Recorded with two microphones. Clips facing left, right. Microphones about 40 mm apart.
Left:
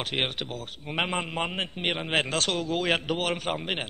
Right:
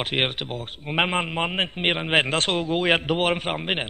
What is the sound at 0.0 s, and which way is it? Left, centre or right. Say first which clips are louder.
Speech: right 4 dB; right.